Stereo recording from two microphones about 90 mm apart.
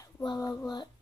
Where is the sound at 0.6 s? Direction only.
55° left (ahead or behind).